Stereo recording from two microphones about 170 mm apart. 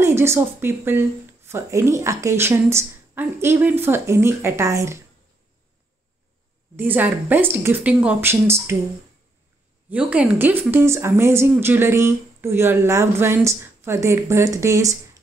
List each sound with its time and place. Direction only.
0.0 s speech: 15° right (ahead or behind)
6.8 s speech: 10° right (ahead or behind)
9.8 s speech: 10° right (ahead or behind)